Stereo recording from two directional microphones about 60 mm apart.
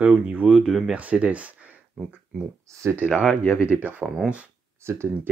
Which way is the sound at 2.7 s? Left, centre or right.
Right.